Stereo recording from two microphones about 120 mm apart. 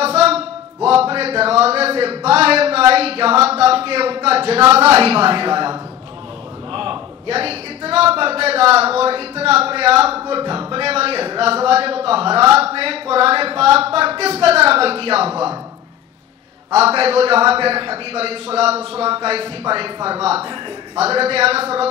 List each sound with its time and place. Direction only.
0.0 s a sound: 60° right (ahead or behind)
4.7 s a man's voice: 55° right (ahead or behind)
10.2 s speech: 40° right (ahead or behind)
16.7 s a man's voice: 55° right (ahead or behind)